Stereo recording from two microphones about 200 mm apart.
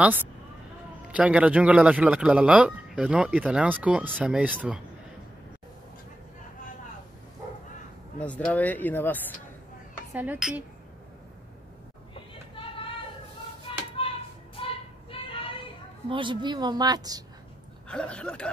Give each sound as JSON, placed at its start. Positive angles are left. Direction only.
{"t": 1.1, "sound": "a man's voice", "side_deg": -5}
{"t": 8.2, "sound": "speech", "side_deg": 5}
{"t": 10.1, "sound": "a man's voice", "side_deg": -10}
{"t": 12.1, "sound": "a sound", "side_deg": 25}
{"t": 13.9, "sound": "a sound", "side_deg": 25}
{"t": 15.0, "sound": "child singing", "side_deg": 25}
{"t": 16.1, "sound": "a woman's voice", "side_deg": -25}
{"t": 17.8, "sound": "speech", "side_deg": 5}